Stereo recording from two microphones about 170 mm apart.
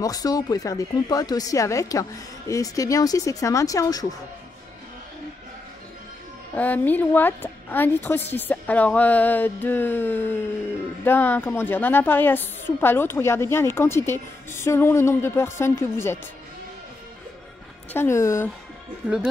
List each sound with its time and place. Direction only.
0.0 s speech: 20° left (ahead or behind)
6.5 s a woman's voice: 10° left (ahead or behind)
17.9 s a woman's voice: 15° left (ahead or behind)